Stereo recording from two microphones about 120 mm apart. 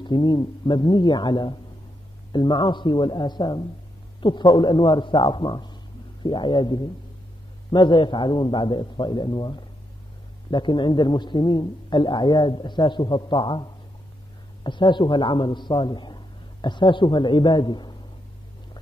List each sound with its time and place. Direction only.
0.0 s a man's voice: 40° left (ahead or behind)